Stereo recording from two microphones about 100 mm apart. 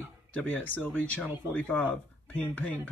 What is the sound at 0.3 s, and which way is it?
Speech, 15° left (ahead or behind).